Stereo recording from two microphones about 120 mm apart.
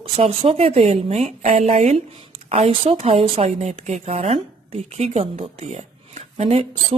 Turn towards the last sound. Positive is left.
turn(degrees=-65)  # may be behind; listen again after turning